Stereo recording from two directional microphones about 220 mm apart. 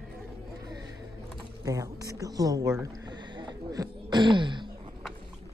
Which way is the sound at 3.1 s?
20° right (ahead or behind).